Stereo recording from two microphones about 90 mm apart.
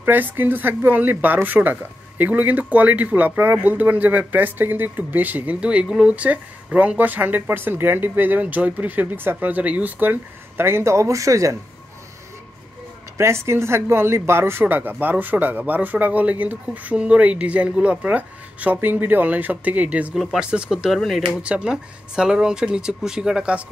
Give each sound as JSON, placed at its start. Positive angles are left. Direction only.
{"t": 0.0, "sound": "speech", "side_deg": -20}
{"t": 13.2, "sound": "speech", "side_deg": -30}